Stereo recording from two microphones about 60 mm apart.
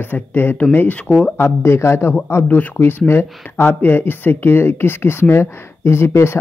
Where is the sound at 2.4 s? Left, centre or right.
Left.